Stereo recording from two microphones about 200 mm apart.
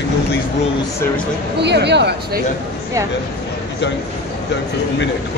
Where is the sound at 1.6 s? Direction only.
60° right (ahead or behind).